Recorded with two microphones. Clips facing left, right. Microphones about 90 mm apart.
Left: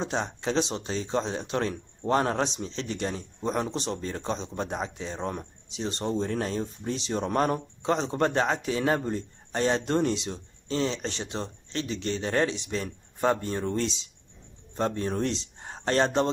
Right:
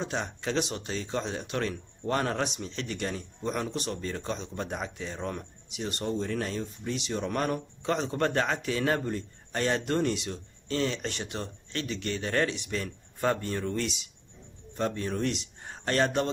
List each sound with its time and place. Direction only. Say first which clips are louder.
0.0 s speech: left 3 dB; 25° left (ahead or behind)